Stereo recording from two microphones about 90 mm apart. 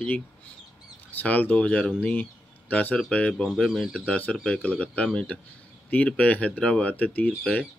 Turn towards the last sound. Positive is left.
turn(degrees=15)  # may be behind; listen again after turning